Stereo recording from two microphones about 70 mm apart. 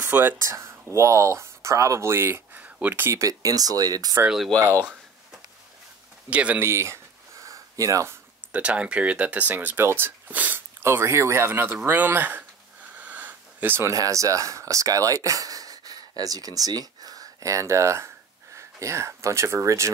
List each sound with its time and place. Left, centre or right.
0.0 s speech: right
0.4 s speech: right
2.6 s a sound: right
3.1 s speech: right
6.3 s speech: centre
6.6 s speech: right
7.4 s a sound: right
8.5 s speech: centre
10.8 s speech: right
12.9 s a sound: right
13.7 s speech: right